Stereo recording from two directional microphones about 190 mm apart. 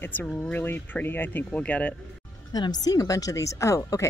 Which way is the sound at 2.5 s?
20° left (ahead or behind).